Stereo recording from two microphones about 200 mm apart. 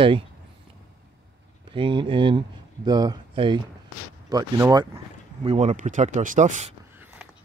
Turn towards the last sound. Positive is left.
turn(degrees=-10)  # may be behind; listen again after turning